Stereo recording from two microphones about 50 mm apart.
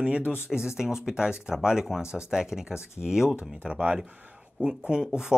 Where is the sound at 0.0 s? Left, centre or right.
Right.